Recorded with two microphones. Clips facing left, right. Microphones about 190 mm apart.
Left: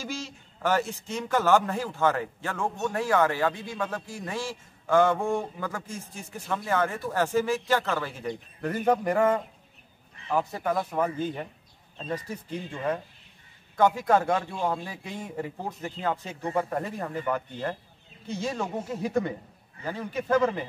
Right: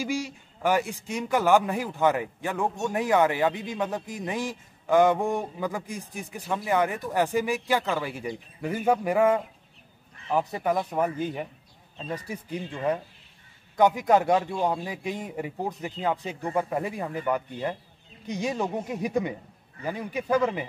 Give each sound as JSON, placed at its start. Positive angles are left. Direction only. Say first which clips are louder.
{"t": 0.0, "sound": "a man's voice", "louder": "right 6 dB", "side_deg": -15}